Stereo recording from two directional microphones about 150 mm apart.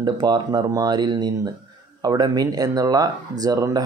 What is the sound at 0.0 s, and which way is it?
Speech, 30° right (ahead or behind).